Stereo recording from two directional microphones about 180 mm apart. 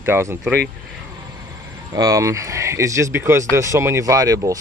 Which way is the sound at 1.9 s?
20° right (ahead or behind).